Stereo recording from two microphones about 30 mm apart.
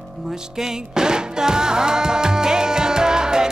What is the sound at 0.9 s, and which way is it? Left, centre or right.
Music, right.